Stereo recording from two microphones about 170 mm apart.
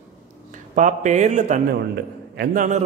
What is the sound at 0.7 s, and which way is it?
Speech, 45° right (ahead or behind).